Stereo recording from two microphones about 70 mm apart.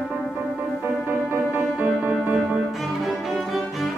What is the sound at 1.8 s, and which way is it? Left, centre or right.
Music, right.